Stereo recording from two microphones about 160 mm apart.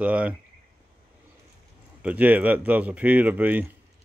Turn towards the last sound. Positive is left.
turn(degrees=-10)  # may be behind; listen again after turning